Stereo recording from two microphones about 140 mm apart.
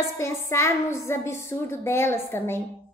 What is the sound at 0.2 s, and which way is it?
A woman's voice, 20° left (ahead or behind).